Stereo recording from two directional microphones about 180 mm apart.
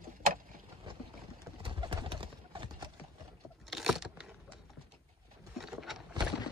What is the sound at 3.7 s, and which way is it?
Vehicle, 5° right (ahead or behind).